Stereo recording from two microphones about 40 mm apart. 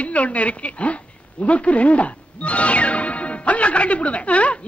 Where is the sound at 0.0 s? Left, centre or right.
Left.